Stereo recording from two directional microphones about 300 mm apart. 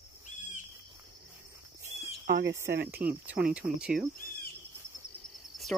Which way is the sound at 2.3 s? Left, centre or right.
Right.